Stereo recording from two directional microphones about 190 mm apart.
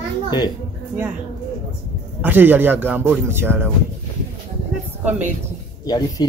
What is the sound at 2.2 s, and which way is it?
A woman's voice, 10° right (ahead or behind).